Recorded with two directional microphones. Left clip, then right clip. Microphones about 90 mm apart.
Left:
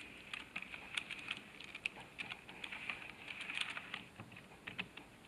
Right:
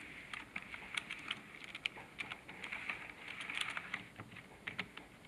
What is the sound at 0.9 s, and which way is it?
Typing, 5° right (ahead or behind).